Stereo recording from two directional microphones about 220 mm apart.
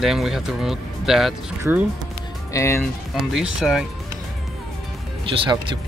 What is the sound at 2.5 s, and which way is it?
Speech, 10° left (ahead or behind).